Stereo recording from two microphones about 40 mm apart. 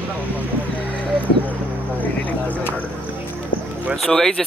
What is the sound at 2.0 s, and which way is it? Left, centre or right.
Music, left.